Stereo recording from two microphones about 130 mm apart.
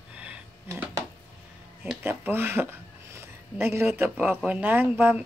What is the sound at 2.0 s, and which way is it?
Speech, 15° right (ahead or behind).